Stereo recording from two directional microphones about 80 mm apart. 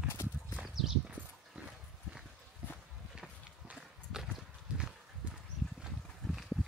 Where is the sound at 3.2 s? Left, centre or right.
Centre.